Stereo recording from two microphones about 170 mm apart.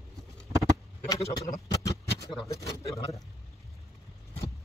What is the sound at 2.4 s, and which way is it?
Speech, 20° left (ahead or behind).